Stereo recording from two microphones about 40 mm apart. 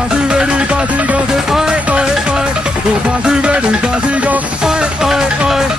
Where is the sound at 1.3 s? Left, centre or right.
Centre.